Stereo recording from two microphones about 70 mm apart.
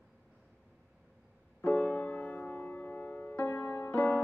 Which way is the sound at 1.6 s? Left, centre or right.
Left.